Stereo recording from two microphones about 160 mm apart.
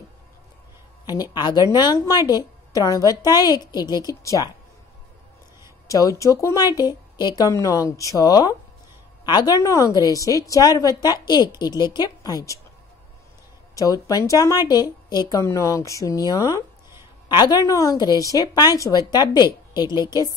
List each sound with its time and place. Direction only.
1.0 s a woman's voice: 25° left (ahead or behind)
5.9 s a woman's voice: 20° left (ahead or behind)
13.7 s a woman's voice: 20° left (ahead or behind)